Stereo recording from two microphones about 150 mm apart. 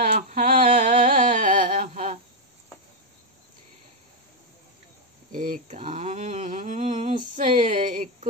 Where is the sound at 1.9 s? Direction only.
45° right (ahead or behind).